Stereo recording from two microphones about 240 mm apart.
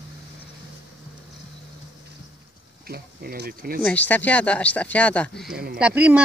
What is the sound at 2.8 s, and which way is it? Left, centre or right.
Speech, right.